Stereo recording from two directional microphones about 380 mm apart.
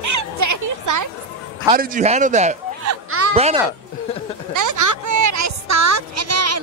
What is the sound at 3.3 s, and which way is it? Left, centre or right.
Speech, centre.